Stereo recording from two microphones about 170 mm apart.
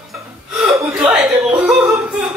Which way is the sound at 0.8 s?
15° right (ahead or behind).